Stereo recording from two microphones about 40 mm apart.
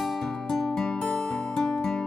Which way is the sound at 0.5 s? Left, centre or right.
Centre.